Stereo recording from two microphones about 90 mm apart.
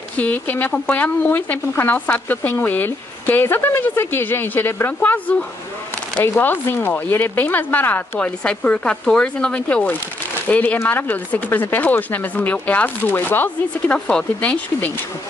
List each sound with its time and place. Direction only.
0.2 s speech: 20° left (ahead or behind)